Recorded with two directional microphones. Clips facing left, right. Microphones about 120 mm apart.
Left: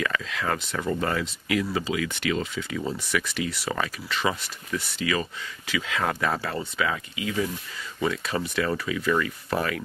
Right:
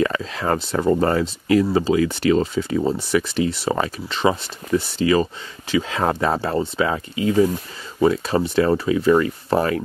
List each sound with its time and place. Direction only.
0.0 s speech: 35° right (ahead or behind)